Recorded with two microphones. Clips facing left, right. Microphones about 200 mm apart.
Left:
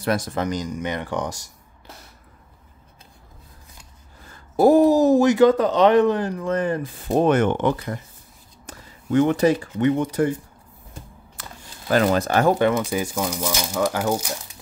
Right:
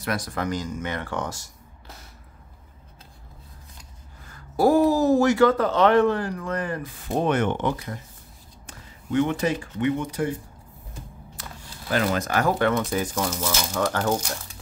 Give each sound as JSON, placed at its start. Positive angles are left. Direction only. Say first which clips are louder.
{"t": 0.0, "sound": "speech", "louder": "left 5 dB", "side_deg": 25}
{"t": 4.3, "sound": "speech", "louder": "left 4 dB", "side_deg": 20}
{"t": 7.2, "sound": "speech", "louder": "left 4 dB", "side_deg": 45}
{"t": 7.6, "sound": "speech", "louder": "left 4 dB", "side_deg": 65}
{"t": 8.6, "sound": "speech", "louder": "left 5 dB", "side_deg": 40}
{"t": 11.9, "sound": "speech", "louder": "left 5 dB", "side_deg": 35}
{"t": 12.7, "sound": "speech", "louder": "left 1 dB", "side_deg": 10}